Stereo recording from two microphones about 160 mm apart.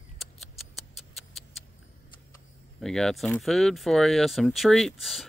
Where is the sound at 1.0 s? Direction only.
Centre (ahead or behind).